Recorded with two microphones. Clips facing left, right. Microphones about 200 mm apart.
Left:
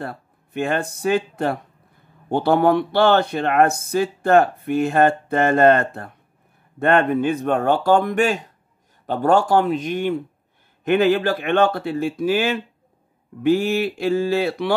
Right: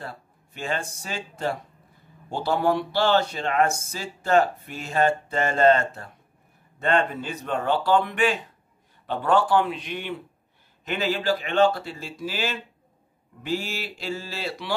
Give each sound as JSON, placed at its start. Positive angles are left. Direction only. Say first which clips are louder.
{"t": 0.0, "sound": "speech", "louder": "left 7 dB", "side_deg": 55}
{"t": 10.8, "sound": "speech", "louder": "left 10 dB", "side_deg": 55}